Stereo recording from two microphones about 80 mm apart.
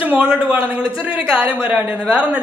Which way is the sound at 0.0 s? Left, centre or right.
Centre.